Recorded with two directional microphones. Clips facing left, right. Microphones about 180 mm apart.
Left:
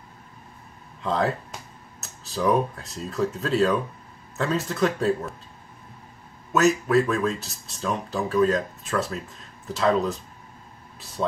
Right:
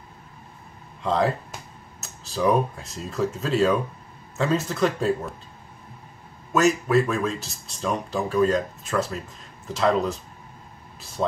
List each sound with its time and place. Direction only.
1.0 s speech: centre (ahead or behind)
6.5 s speech: centre (ahead or behind)
11.2 s speech: 20° right (ahead or behind)